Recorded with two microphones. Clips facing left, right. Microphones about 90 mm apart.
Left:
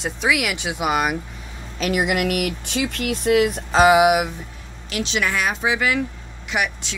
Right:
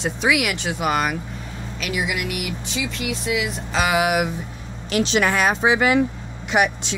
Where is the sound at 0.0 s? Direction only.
Centre (ahead or behind).